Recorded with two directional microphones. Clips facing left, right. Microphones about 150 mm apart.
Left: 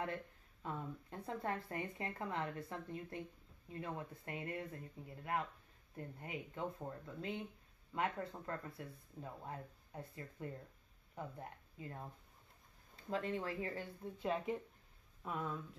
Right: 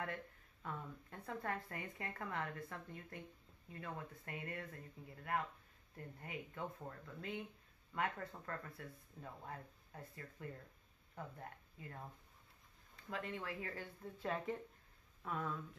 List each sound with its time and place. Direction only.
0.0 s speech: 25° left (ahead or behind)
13.1 s speech: 30° left (ahead or behind)